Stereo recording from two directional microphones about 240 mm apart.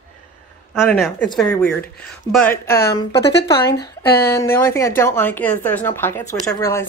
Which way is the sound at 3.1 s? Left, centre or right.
Left.